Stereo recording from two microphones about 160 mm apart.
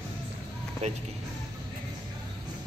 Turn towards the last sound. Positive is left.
turn(degrees=-45)  # may be behind; listen again after turning